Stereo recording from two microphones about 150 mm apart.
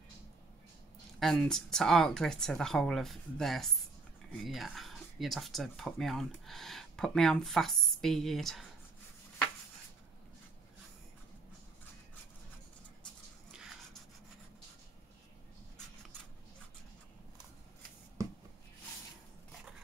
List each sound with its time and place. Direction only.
1.2 s speech: 5° left (ahead or behind)
13.5 s dog: 5° right (ahead or behind)
18.2 s a sound: 20° right (ahead or behind)